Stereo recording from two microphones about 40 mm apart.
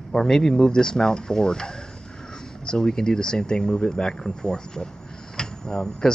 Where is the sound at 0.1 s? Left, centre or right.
Centre.